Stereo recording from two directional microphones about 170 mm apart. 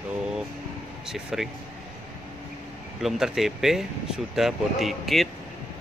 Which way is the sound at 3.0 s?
Centre (ahead or behind).